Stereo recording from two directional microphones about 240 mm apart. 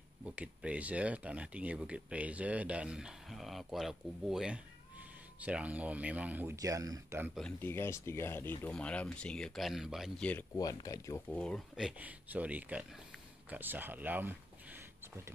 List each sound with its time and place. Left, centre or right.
0.2 s speech: centre
7.3 s speech: centre